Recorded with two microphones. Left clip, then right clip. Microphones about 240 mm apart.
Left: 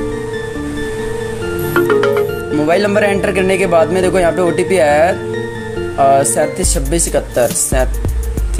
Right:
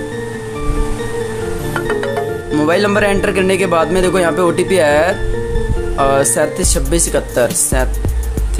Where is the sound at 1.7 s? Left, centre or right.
Centre.